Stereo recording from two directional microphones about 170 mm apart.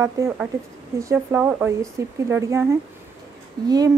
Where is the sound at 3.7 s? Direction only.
20° right (ahead or behind).